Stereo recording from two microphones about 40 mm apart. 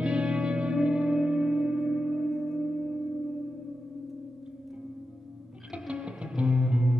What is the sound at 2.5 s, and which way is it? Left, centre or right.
Singing bowl, right.